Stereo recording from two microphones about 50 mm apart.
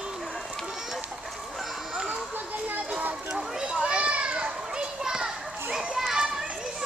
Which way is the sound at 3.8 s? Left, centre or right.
Right.